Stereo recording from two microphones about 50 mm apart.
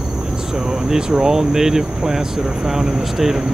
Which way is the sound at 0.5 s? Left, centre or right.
Centre.